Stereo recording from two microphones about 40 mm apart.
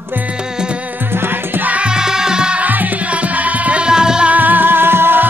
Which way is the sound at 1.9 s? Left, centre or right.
Centre.